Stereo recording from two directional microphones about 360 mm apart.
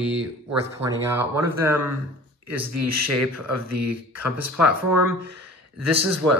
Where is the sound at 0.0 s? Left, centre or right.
Centre.